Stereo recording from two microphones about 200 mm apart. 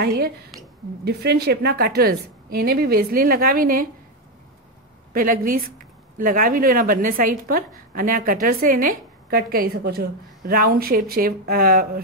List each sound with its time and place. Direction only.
0.0 s a woman's voice: 50° right (ahead or behind)
5.1 s a woman's voice: 45° right (ahead or behind)